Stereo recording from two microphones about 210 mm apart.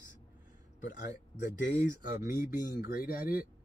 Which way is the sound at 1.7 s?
40° left (ahead or behind).